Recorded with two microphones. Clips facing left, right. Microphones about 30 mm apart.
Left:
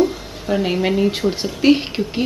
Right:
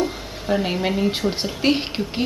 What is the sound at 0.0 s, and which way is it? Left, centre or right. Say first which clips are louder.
Speech: left 6 dB; centre.